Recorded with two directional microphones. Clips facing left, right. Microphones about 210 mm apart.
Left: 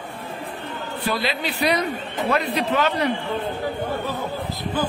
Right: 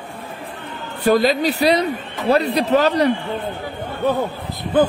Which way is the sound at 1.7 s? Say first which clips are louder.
Right 5 dB; 30° right (ahead or behind).